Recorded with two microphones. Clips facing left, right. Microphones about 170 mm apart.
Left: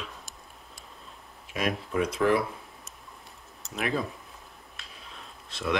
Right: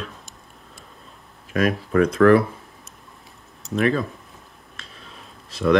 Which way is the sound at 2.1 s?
55° right (ahead or behind).